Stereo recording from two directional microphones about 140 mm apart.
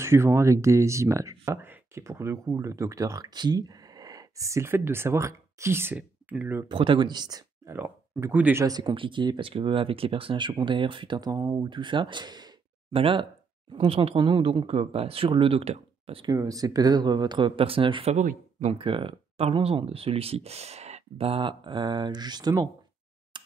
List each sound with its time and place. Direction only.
0.0 s speech: 20° right (ahead or behind)
6.7 s speech: 35° right (ahead or behind)
7.7 s speech: 15° right (ahead or behind)
8.6 s speech: 30° right (ahead or behind)
11.6 s speech: 35° right (ahead or behind)
16.3 s speech: 25° right (ahead or behind)
18.1 s speech: 60° right (ahead or behind)
18.8 s speech: 40° right (ahead or behind)
23.3 s a sound: 35° right (ahead or behind)